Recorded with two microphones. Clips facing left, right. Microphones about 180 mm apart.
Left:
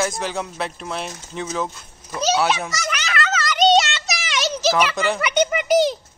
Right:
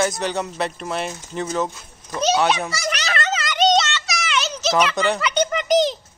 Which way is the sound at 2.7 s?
35° right (ahead or behind).